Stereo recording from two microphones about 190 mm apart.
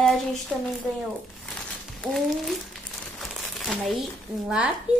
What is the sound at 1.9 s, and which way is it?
Crumpling, centre (ahead or behind).